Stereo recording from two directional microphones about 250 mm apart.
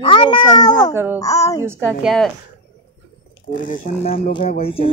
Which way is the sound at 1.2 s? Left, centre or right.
Centre.